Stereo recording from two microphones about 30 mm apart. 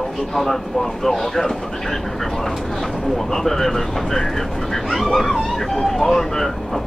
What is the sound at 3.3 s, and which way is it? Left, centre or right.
Speech, centre.